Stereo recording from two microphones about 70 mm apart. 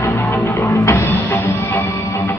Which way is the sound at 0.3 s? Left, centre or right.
Left.